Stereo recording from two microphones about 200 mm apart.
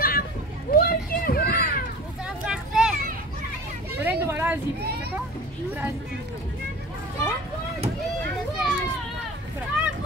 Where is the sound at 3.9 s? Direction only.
10° right (ahead or behind).